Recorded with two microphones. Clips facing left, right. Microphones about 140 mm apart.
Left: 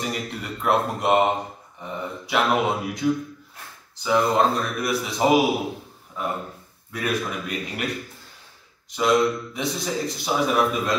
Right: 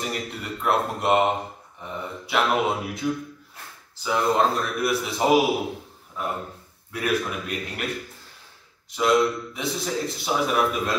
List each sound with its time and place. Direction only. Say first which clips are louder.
0.0 s speech: left 1 dB; centre (ahead or behind)
6.9 s speech: right 1 dB; 5° right (ahead or behind)
8.9 s speech: left 1 dB; centre (ahead or behind)